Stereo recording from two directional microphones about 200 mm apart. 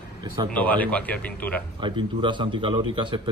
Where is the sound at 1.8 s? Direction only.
25° right (ahead or behind).